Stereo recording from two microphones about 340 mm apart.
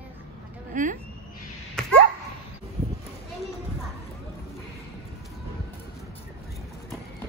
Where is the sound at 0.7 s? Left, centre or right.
Right.